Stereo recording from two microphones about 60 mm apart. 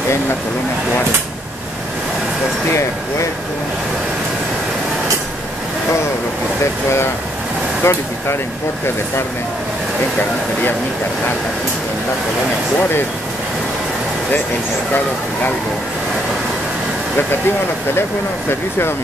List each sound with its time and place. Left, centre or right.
7.8 s speech: left
18.5 s speech: left